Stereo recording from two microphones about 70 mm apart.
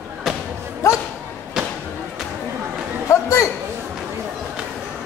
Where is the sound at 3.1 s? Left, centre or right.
Left.